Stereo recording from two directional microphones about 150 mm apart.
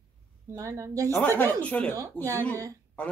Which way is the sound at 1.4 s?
10° left (ahead or behind).